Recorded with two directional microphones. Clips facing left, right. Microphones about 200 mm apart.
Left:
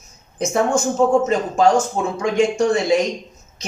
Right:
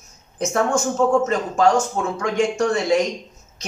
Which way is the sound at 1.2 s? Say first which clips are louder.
Left 2 dB; 15° left (ahead or behind).